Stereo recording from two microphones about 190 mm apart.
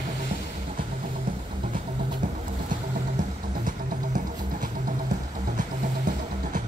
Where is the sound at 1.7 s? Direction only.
40° right (ahead or behind).